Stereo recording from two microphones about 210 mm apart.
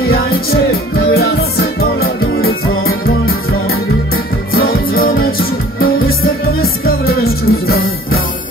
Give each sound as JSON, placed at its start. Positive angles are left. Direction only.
{"t": 1.1, "sound": "music", "side_deg": 45}
{"t": 2.0, "sound": "music", "side_deg": 75}
{"t": 4.6, "sound": "music", "side_deg": 45}
{"t": 7.1, "sound": "music", "side_deg": 45}